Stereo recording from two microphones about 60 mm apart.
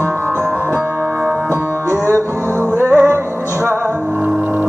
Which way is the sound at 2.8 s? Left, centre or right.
Right.